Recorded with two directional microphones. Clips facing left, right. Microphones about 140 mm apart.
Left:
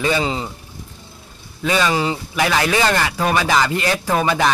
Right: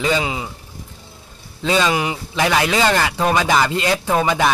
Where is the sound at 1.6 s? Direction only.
20° right (ahead or behind).